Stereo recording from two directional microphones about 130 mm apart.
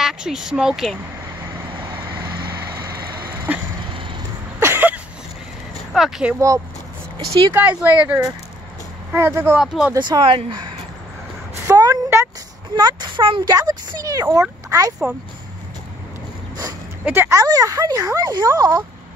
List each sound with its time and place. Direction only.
0.0 s speech: 5° right (ahead or behind)
3.5 s a sound: 10° right (ahead or behind)
5.9 s speech: 5° right (ahead or behind)
7.5 s speech: 10° right (ahead or behind)
9.6 s speech: 5° right (ahead or behind)
9.9 s speech: 35° right (ahead or behind)
11.6 s a sound: 25° right (ahead or behind)
12.7 s speech: 35° right (ahead or behind)
17.0 s speech: 15° right (ahead or behind)